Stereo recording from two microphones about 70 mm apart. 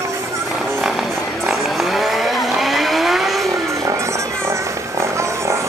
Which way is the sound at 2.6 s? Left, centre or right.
Centre.